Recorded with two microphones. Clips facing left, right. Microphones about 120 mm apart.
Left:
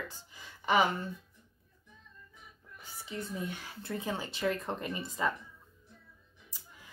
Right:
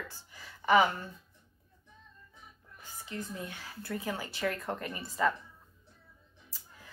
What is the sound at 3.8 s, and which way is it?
Speech, 25° left (ahead or behind).